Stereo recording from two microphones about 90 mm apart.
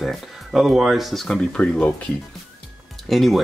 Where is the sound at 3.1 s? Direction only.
Centre (ahead or behind).